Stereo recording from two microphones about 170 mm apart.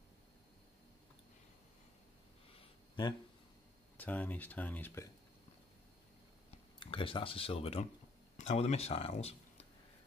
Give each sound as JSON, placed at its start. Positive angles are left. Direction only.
{"t": 4.0, "sound": "speech", "side_deg": 10}
{"t": 6.8, "sound": "speech", "side_deg": 30}